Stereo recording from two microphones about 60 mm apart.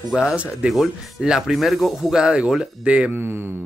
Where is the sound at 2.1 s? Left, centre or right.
Centre.